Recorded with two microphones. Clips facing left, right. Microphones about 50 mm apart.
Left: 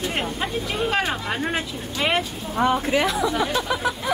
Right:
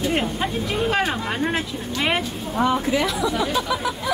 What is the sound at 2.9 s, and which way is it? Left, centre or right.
Speech, left.